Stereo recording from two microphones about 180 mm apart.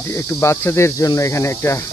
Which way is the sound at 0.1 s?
15° left (ahead or behind).